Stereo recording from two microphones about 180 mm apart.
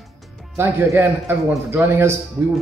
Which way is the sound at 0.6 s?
15° right (ahead or behind).